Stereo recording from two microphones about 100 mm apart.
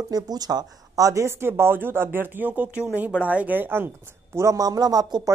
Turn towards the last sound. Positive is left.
turn(degrees=-40)  # may be behind; listen again after turning